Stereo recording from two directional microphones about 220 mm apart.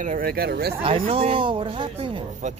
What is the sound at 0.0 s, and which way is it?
Speech, 40° right (ahead or behind).